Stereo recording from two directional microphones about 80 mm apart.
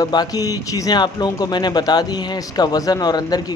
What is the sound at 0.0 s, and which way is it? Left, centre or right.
A man's voice, left.